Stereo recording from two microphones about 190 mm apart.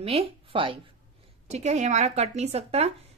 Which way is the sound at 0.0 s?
30° right (ahead or behind).